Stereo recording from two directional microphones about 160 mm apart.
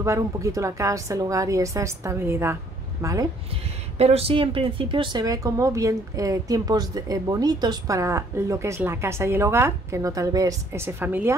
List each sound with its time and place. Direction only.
0.0 s a woman's voice: 20° right (ahead or behind)
4.0 s speech: 40° right (ahead or behind); by 11.3 s 10° right (ahead or behind)